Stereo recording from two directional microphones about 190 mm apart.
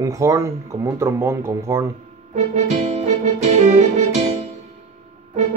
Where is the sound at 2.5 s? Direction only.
35° right (ahead or behind).